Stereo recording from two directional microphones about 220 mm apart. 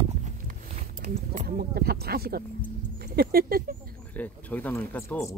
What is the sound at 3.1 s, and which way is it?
Speech, 45° right (ahead or behind).